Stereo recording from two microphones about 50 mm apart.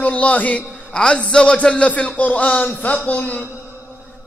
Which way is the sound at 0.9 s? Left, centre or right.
Left.